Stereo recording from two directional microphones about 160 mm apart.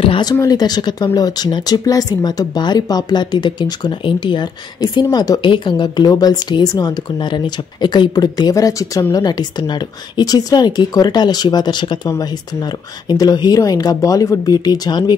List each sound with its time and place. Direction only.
0.0 s speech: 30° left (ahead or behind)
13.1 s speech: 25° left (ahead or behind)